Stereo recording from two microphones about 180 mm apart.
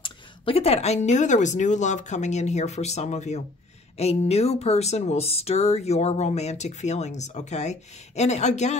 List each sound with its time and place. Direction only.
0.0 s speech: 30° left (ahead or behind)